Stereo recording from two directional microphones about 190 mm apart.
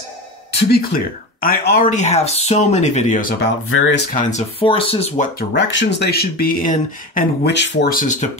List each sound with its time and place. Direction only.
0.5 s speech: 60° left (ahead or behind); by 3.3 s 40° left (ahead or behind)
3.3 s speech: 65° left (ahead or behind)
4.1 s speech: 40° left (ahead or behind)
5.5 s speech: 70° left (ahead or behind); by 7.5 s 45° left (ahead or behind)
7.5 s speech: 65° left (ahead or behind)
7.9 s speech: 40° left (ahead or behind)